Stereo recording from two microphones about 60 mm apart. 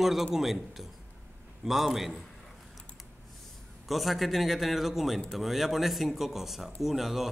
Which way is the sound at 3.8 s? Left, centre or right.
Centre.